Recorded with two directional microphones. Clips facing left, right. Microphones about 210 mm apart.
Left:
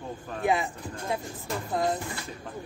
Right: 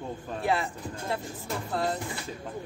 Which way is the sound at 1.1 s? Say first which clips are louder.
Left 1 dB; centre (ahead or behind).